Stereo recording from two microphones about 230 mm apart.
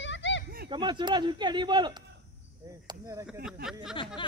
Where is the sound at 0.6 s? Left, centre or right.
Right.